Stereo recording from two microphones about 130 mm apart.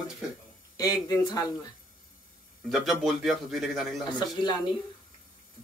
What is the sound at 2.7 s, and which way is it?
Speech, centre (ahead or behind).